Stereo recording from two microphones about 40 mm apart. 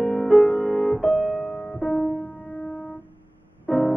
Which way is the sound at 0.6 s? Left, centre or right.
Centre.